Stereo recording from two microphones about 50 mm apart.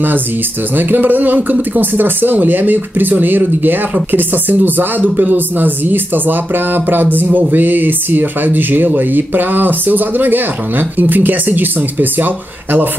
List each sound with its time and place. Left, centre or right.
0.7 s speech: right